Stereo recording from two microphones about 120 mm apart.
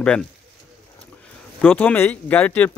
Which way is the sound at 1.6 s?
10° left (ahead or behind).